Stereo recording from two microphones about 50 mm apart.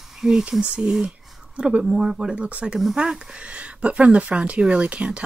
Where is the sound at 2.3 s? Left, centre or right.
Right.